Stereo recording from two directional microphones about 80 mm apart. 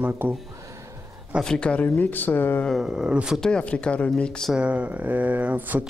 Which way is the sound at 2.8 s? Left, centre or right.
Centre.